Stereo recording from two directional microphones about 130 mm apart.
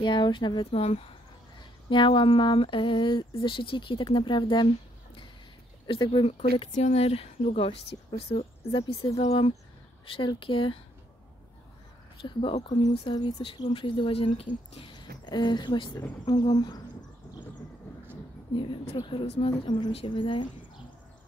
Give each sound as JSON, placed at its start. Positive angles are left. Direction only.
{"t": 0.0, "sound": "speech", "side_deg": 35}
{"t": 5.9, "sound": "speech", "side_deg": 40}
{"t": 6.7, "sound": "speech", "side_deg": 60}
{"t": 9.1, "sound": "speech", "side_deg": 50}
{"t": 10.1, "sound": "speech", "side_deg": 40}
{"t": 12.2, "sound": "speech", "side_deg": 40}
{"t": 18.5, "sound": "speech", "side_deg": 40}